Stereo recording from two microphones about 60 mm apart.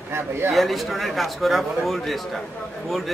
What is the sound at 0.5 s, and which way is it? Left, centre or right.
Speech, centre.